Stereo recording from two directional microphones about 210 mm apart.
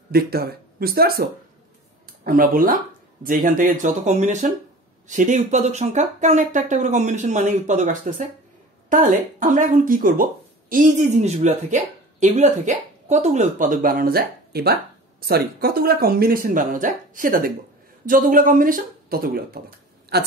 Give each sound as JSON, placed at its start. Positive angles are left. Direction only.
{"t": 0.1, "sound": "speech", "side_deg": -50}